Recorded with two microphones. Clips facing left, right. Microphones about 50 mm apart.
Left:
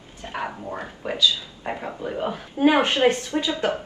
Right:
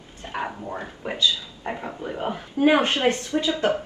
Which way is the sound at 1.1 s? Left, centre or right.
Right.